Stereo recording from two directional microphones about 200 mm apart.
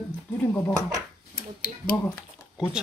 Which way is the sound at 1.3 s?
45° left (ahead or behind).